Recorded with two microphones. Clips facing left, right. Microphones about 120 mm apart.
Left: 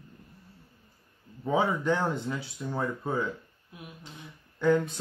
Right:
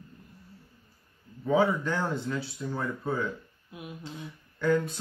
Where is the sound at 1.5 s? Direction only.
20° left (ahead or behind).